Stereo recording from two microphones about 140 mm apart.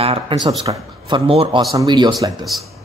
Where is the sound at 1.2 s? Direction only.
40° right (ahead or behind).